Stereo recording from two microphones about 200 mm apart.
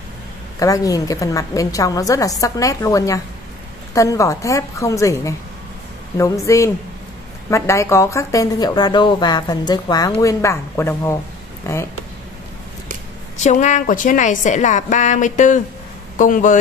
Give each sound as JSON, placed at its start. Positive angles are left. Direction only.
{"t": 0.6, "sound": "a woman's voice", "side_deg": 15}
{"t": 13.4, "sound": "a woman's voice", "side_deg": 35}